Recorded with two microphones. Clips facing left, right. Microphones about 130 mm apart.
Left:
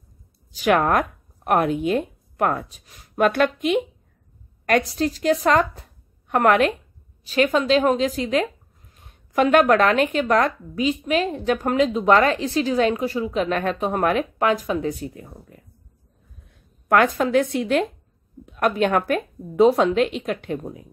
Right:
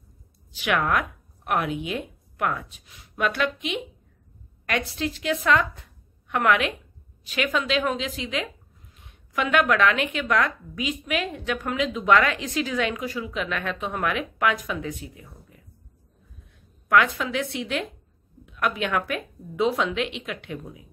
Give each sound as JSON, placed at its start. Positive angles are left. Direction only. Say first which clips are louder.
{"t": 0.5, "sound": "a woman's voice", "louder": "left 6 dB", "side_deg": 40}
{"t": 16.9, "sound": "a woman's voice", "louder": "left 5 dB", "side_deg": 45}